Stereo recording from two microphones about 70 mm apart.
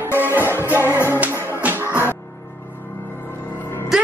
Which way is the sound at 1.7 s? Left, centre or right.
Right.